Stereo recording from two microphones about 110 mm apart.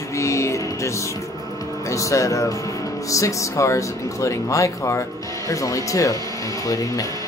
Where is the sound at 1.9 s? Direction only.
30° left (ahead or behind).